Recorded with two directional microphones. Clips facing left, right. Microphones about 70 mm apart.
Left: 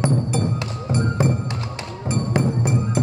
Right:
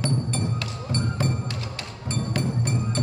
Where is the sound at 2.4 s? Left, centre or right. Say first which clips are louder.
Left 7 dB; centre.